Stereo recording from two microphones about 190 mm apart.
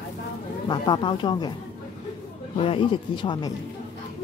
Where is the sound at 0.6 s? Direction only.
25° left (ahead or behind).